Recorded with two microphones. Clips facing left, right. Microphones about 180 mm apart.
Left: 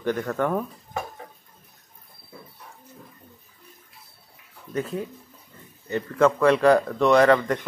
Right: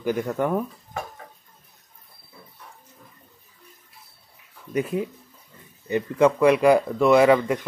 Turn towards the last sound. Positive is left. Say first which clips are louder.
# right 1 dB
turn(degrees=-10)  # may be behind; listen again after turning